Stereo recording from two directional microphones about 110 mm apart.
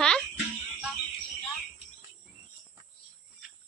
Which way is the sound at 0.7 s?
15° right (ahead or behind).